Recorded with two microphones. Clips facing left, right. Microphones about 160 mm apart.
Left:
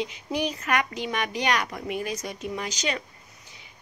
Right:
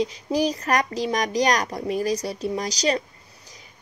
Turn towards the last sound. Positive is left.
turn(degrees=-35)  # may be behind; listen again after turning